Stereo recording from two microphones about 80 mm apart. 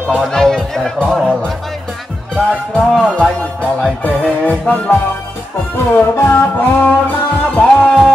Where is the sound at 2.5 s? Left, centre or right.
Centre.